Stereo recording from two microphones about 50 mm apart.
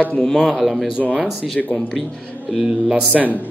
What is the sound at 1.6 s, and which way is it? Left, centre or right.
Speech, centre.